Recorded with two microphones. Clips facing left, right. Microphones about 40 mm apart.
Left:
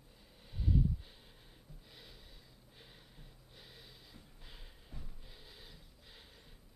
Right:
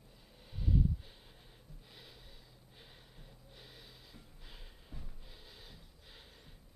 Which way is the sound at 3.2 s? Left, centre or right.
Centre.